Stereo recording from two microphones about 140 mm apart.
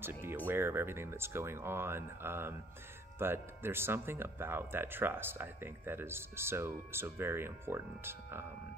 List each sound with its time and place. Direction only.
0.0 s speech: 15° right (ahead or behind)